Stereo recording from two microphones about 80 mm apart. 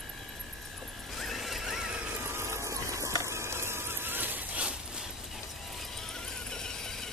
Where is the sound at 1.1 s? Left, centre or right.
Centre.